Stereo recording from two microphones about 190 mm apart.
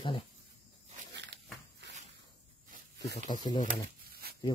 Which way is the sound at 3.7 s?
50° right (ahead or behind).